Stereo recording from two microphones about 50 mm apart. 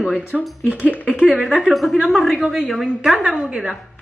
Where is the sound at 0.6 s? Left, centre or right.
Right.